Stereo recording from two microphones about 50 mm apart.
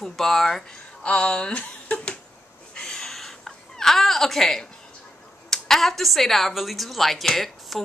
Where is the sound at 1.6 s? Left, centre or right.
Left.